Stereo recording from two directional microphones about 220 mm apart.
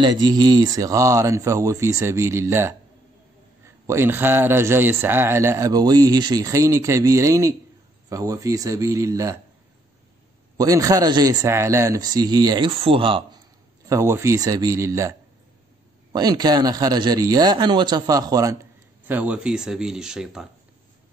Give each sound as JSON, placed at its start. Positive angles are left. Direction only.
{"t": 0.0, "sound": "speech", "side_deg": -20}
{"t": 10.6, "sound": "speech", "side_deg": -15}